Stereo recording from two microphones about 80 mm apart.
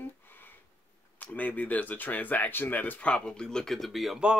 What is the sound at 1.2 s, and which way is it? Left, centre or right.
Speech, left.